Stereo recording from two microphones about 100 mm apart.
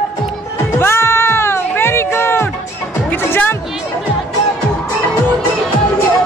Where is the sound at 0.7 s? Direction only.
25° left (ahead or behind).